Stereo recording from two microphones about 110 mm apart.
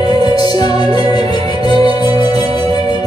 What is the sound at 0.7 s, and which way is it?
Music, 55° right (ahead or behind).